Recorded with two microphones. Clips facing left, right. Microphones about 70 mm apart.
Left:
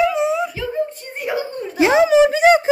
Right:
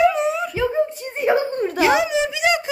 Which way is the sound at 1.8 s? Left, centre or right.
Left.